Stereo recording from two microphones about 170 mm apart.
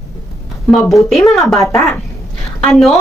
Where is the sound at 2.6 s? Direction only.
Centre (ahead or behind).